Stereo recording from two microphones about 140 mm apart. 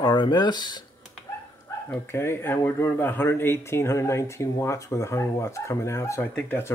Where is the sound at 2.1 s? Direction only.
15° left (ahead or behind).